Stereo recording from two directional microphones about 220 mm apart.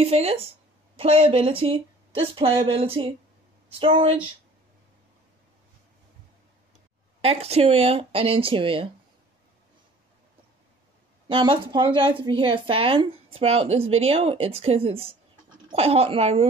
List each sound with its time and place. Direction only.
0.0 s a woman's voice: 25° right (ahead or behind)
7.2 s a woman's voice: 30° right (ahead or behind)
11.2 s a woman's voice: 25° right (ahead or behind)